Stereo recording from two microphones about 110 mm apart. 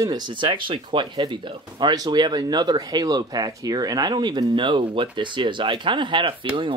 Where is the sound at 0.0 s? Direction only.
45° right (ahead or behind).